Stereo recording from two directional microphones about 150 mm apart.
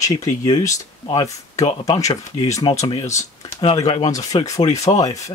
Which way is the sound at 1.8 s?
25° left (ahead or behind).